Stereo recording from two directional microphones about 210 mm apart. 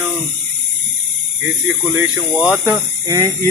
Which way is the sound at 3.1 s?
20° right (ahead or behind).